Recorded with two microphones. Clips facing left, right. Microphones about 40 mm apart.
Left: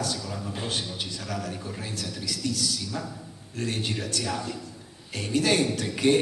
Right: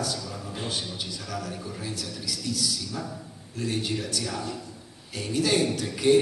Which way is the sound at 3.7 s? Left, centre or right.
Left.